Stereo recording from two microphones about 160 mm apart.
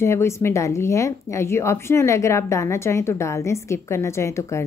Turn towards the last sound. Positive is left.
turn(degrees=20)  # may be behind; listen again after turning